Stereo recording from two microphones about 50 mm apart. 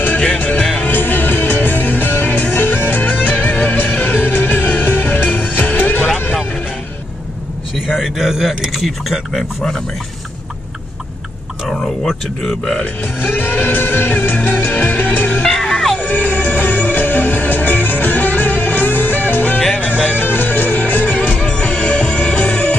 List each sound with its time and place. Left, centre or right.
0.2 s music: left
7.8 s speech: centre
11.6 s a sound: centre
12.8 s speech: left
15.4 s music: centre
16.0 s music: left
21.4 s music: left